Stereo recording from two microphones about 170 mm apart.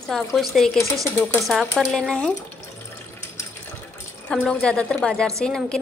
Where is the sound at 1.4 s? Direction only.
Centre (ahead or behind).